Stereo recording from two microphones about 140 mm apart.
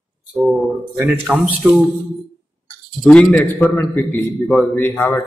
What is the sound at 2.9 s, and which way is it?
A man's voice, 5° left (ahead or behind).